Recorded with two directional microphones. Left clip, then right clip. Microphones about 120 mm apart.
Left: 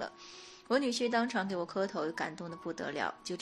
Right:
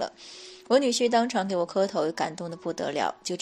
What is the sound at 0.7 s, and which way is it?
A woman's voice, 40° right (ahead or behind).